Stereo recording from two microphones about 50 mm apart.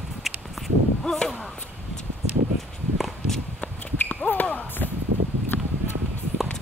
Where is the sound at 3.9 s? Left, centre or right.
Left.